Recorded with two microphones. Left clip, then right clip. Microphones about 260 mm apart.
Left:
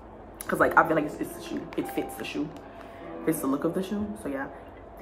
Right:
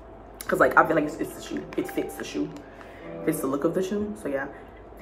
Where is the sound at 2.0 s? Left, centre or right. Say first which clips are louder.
Right 2 dB; left.